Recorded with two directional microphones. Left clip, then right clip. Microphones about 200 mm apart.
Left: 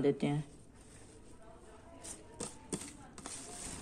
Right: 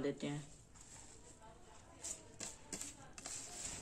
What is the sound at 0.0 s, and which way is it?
Speech, 45° left (ahead or behind).